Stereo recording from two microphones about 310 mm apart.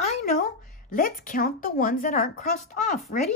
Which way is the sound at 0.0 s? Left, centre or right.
Left.